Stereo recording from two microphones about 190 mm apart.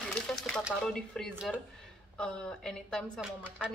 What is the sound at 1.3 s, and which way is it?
Speech, 5° right (ahead or behind).